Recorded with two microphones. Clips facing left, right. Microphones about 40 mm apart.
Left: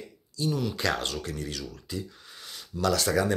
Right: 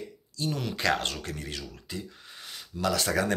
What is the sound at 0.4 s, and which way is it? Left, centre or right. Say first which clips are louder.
Speech: left 3 dB; right.